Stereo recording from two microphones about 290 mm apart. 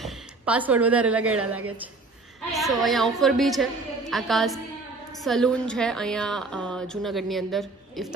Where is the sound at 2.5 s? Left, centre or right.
Centre.